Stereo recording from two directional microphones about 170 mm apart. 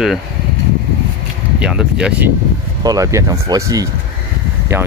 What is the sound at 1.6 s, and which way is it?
Speech, 5° right (ahead or behind).